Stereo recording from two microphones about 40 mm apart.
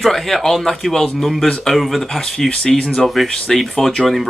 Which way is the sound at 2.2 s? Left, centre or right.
Centre.